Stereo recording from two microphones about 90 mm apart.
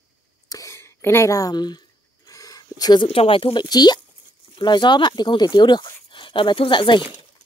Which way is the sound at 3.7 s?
50° left (ahead or behind).